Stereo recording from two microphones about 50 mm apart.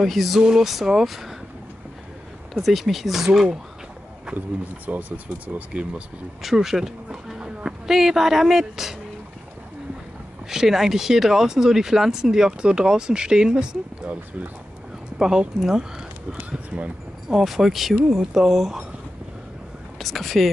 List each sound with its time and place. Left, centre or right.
0.0 s speech: centre
2.5 s speech: centre
4.8 s speech: right
6.4 s speech: centre
10.5 s speech: centre
14.0 s speech: right
15.1 s speech: centre
16.3 s speech: right
17.3 s speech: centre
20.0 s speech: centre